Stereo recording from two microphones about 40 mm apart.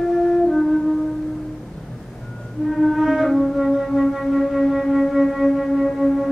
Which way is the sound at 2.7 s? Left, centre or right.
Centre.